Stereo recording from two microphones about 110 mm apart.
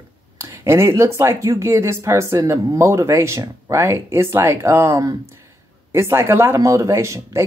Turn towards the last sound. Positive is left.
turn(degrees=-25)  # may be behind; listen again after turning